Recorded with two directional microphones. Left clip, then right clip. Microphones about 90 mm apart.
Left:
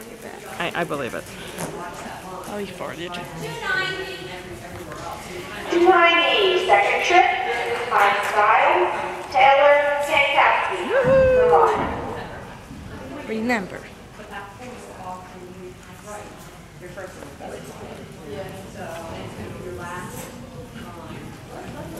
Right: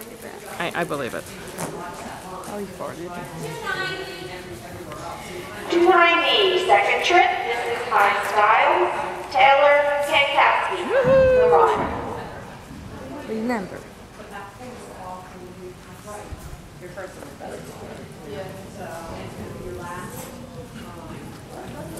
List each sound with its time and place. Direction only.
0.5 s speech: 5° right (ahead or behind)
2.5 s speech: 40° left (ahead or behind)
3.1 s a woman's voice: 5° left (ahead or behind)
5.7 s a woman's voice: centre (ahead or behind)